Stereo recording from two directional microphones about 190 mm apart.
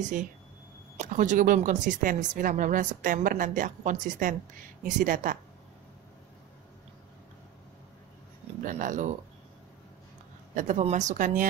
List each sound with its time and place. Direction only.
0.0 s speech: 45° right (ahead or behind)
8.6 s speech: 40° right (ahead or behind)
10.5 s speech: 40° right (ahead or behind)